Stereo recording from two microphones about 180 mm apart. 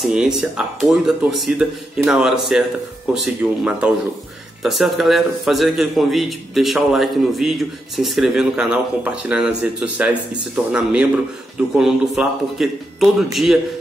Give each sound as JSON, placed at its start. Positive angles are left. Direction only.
{"t": 0.0, "sound": "a man's voice", "side_deg": -5}